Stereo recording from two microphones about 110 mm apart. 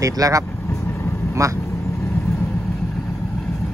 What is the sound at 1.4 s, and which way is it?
Speech, 30° right (ahead or behind).